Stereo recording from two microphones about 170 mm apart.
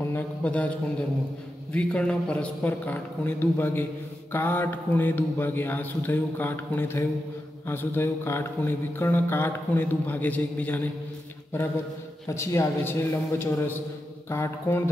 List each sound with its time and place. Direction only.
0.0 s a sound: 10° left (ahead or behind)
1.7 s speech: 5° left (ahead or behind)
12.3 s speech: 15° left (ahead or behind)